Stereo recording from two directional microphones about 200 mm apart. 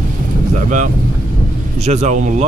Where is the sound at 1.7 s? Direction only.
35° right (ahead or behind).